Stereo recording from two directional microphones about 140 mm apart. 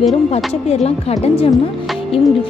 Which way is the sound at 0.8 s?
45° left (ahead or behind).